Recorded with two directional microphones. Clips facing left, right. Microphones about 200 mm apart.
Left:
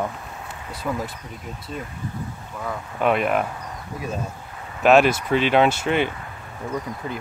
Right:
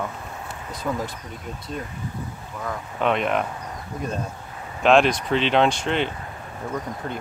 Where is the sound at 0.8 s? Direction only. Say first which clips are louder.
Even; 5° left (ahead or behind).